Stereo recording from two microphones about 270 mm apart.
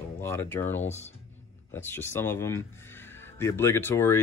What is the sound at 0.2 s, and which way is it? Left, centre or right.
Speech, centre.